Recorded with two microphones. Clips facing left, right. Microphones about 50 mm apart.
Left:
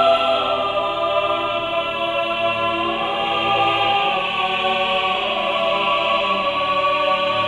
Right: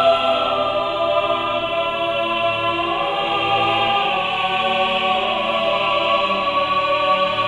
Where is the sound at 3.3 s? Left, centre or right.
Left.